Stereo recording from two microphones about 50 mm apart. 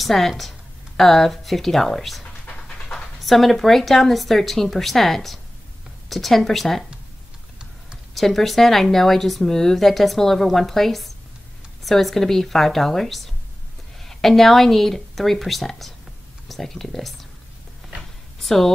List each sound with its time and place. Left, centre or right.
0.0 s speech: centre
2.5 s dog: centre
3.2 s speech: centre
8.1 s speech: centre
18.4 s a sound: centre